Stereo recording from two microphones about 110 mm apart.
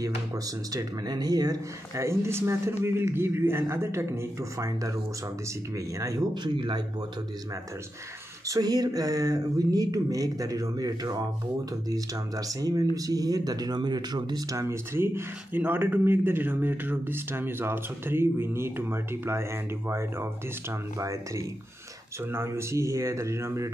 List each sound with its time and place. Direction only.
0.7 s speech: 40° right (ahead or behind)
8.5 s speech: 35° right (ahead or behind)